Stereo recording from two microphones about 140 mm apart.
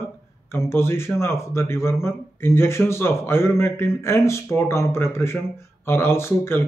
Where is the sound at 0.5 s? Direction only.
15° left (ahead or behind).